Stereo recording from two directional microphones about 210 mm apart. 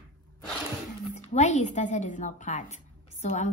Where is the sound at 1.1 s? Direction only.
35° left (ahead or behind).